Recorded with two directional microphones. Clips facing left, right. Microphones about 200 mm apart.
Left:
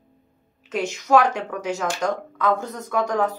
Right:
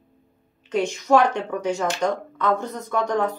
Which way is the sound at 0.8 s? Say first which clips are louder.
Even; 5° left (ahead or behind).